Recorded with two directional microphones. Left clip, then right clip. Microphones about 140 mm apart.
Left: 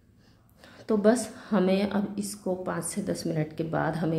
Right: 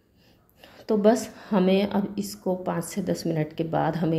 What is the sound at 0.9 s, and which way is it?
A woman's voice, 20° right (ahead or behind).